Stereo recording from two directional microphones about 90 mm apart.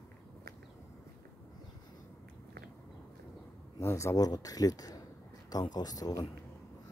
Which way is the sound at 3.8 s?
30° left (ahead or behind).